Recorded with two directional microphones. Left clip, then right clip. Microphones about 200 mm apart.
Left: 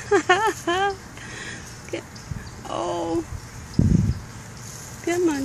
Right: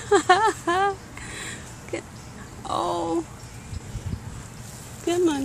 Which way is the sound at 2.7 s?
25° right (ahead or behind).